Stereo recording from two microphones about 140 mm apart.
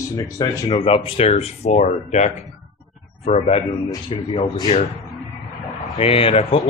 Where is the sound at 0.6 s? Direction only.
40° left (ahead or behind).